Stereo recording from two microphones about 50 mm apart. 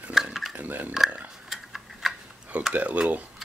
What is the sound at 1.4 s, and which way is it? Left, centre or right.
Tick-tock, centre.